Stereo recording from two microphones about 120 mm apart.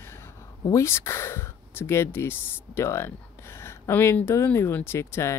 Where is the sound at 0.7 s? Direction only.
25° left (ahead or behind).